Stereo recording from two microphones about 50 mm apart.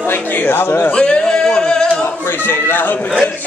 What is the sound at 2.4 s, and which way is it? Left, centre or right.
Speech, left.